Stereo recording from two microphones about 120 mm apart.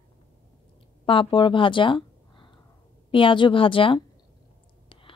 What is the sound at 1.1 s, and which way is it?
A woman's voice, 45° left (ahead or behind).